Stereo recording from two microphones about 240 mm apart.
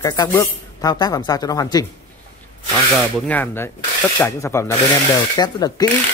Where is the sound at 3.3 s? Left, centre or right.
Centre.